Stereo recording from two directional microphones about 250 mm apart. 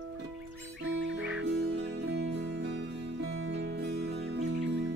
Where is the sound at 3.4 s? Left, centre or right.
Right.